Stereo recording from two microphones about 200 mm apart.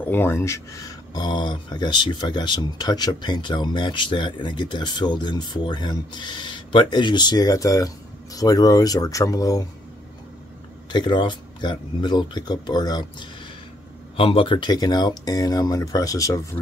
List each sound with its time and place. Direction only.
0.0 s speech: 10° left (ahead or behind)
10.9 s speech: 20° left (ahead or behind)